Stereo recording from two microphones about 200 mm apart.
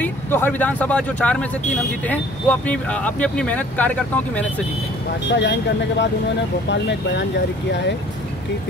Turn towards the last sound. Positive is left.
turn(degrees=60)  # may be behind; listen again after turning